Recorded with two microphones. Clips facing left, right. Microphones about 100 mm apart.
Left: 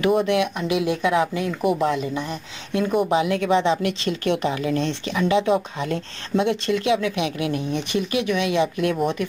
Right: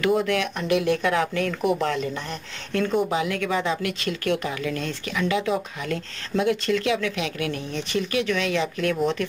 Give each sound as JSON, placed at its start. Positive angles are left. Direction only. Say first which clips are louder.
{"t": 0.0, "sound": "speech", "louder": "left 3 dB", "side_deg": 20}
{"t": 0.6, "sound": "speech", "louder": "even", "side_deg": 5}
{"t": 1.6, "sound": "speech", "louder": "left 3 dB", "side_deg": 5}
{"t": 1.9, "sound": "speech", "louder": "left 3 dB", "side_deg": 15}
{"t": 3.1, "sound": "speech", "louder": "left 5 dB", "side_deg": 25}